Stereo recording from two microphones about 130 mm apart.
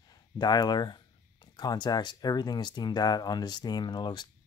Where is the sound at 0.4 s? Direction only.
30° left (ahead or behind).